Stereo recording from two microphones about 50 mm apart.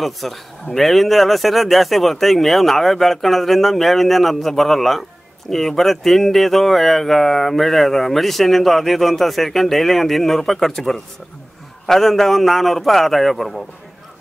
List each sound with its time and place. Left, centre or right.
0.0 s speech: centre